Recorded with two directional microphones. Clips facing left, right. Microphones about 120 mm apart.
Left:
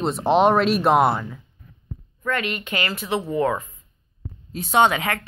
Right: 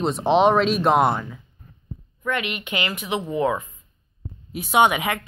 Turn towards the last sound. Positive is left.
turn(degrees=-15)  # may be behind; listen again after turning